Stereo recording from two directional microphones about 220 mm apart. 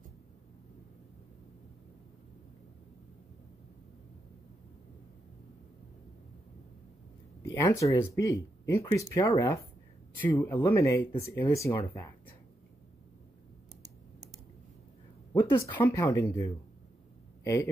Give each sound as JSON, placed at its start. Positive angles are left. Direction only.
{"t": 7.4, "sound": "speech", "side_deg": 15}
{"t": 15.3, "sound": "speech", "side_deg": 20}
{"t": 17.4, "sound": "a sound", "side_deg": 15}